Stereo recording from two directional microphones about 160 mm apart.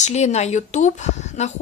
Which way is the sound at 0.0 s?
45° left (ahead or behind).